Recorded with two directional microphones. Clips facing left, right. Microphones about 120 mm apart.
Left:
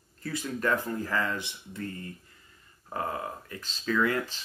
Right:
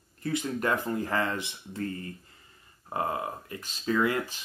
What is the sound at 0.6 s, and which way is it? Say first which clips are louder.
Speech: left 3 dB; 20° right (ahead or behind).